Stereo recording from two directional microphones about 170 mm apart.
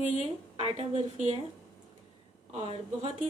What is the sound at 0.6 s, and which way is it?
Speech, 35° right (ahead or behind).